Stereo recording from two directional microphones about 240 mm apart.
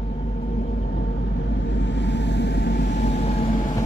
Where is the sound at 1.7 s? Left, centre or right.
Left.